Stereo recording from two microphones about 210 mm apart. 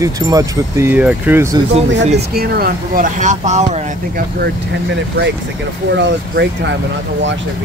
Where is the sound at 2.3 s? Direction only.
45° right (ahead or behind).